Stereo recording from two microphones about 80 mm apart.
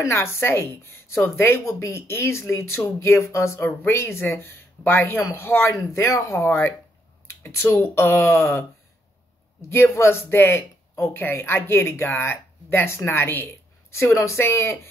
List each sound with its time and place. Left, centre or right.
0.0 s a woman's voice: left
9.7 s speech: left